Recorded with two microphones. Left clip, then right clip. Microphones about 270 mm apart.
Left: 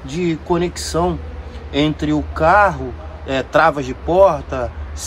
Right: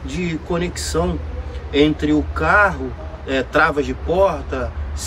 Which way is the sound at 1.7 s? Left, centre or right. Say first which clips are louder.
Right 2 dB; left.